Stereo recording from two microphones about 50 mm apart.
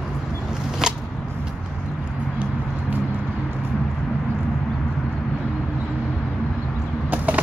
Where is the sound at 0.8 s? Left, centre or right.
Centre.